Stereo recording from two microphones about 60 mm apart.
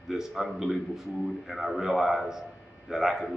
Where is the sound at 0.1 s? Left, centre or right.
Centre.